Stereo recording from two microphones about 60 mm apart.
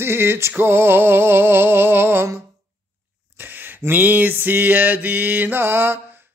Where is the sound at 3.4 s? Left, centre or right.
Right.